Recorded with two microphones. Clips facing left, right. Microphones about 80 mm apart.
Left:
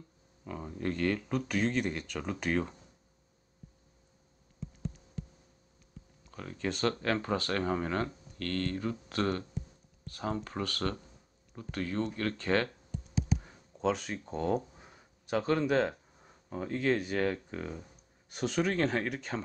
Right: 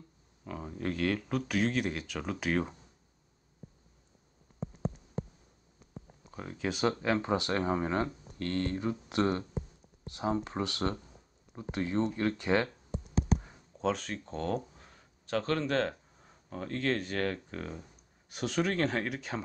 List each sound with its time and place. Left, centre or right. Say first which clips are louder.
0.5 s speech: even; centre
4.6 s insect: right 5 dB; right
6.6 s speech: right 1 dB; centre
13.7 s speech: left 1 dB; centre